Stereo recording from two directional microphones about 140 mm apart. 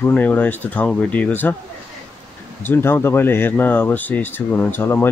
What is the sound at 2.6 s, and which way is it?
Speech, 15° left (ahead or behind).